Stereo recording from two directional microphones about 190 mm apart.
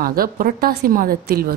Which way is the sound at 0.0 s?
50° right (ahead or behind).